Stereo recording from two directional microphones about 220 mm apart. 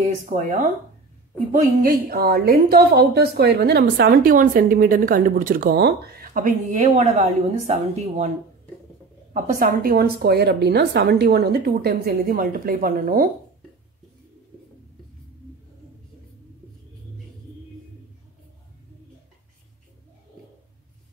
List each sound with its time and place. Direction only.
0.2 s a woman's voice: 35° right (ahead or behind)
9.3 s a woman's voice: 40° right (ahead or behind)